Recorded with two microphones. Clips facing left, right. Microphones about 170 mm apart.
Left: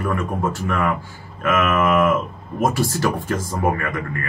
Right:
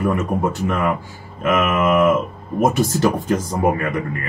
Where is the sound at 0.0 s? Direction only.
20° right (ahead or behind).